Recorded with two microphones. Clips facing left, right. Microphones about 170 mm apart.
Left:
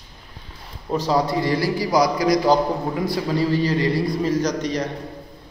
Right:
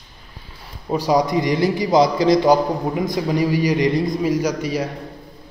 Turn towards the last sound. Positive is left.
turn(degrees=-10)  # may be behind; listen again after turning